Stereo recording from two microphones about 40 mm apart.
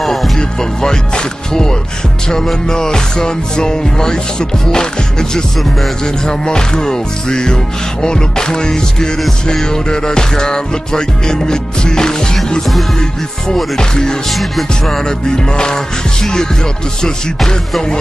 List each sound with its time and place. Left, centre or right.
0.0 s music: centre
0.4 s speech: centre
2.7 s music: centre
6.2 s music: centre
13.7 s music: centre
14.3 s music: centre
15.0 s music: centre